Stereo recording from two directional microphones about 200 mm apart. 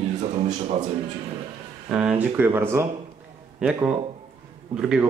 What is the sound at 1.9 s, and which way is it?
Speech, 5° right (ahead or behind).